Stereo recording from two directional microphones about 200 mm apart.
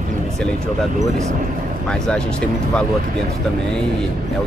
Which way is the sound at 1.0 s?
35° right (ahead or behind).